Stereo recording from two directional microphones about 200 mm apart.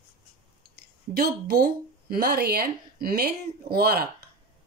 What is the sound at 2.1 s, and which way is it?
Speech, 50° right (ahead or behind).